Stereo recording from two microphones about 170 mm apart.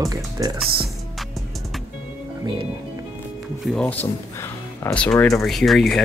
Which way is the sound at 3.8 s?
10° left (ahead or behind).